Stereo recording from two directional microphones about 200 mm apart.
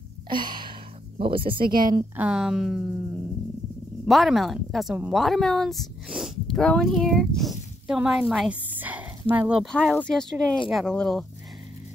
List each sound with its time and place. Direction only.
0.3 s a sound: 25° right (ahead or behind)
1.7 s a woman's voice: 45° right (ahead or behind)
2.1 s speech: 5° right (ahead or behind)
4.1 s speech: centre (ahead or behind)